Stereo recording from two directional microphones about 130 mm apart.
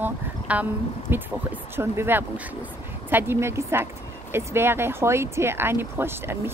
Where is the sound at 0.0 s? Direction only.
10° right (ahead or behind).